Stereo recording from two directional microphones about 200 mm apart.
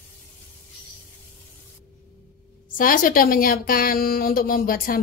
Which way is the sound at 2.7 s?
45° left (ahead or behind).